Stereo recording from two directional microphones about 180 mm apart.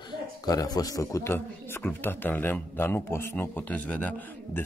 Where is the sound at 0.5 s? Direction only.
20° left (ahead or behind).